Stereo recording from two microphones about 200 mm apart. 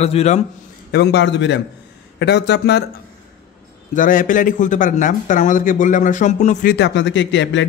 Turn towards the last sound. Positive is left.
turn(degrees=65)  # may be behind; listen again after turning